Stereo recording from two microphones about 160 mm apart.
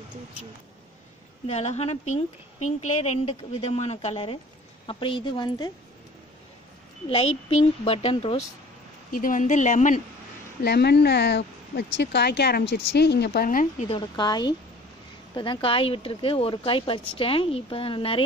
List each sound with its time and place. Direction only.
1.5 s a woman's voice: 45° left (ahead or behind)
7.1 s speech: 35° left (ahead or behind)
9.1 s a woman's voice: 55° left (ahead or behind)
10.6 s speech: 90° left; by 13.8 s 60° left (ahead or behind)
13.8 s a woman's voice: 30° left (ahead or behind)